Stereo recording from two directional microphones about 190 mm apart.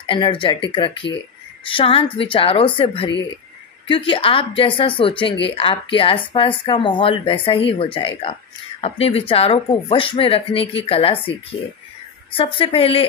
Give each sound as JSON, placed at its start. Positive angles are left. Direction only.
{"t": 0.0, "sound": "speech", "side_deg": 25}
{"t": 12.4, "sound": "speech", "side_deg": 30}